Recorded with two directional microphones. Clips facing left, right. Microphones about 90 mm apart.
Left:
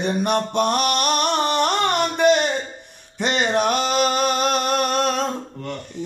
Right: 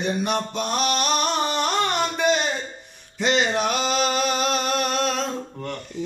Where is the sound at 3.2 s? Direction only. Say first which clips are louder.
Left 2 dB; 50° left (ahead or behind).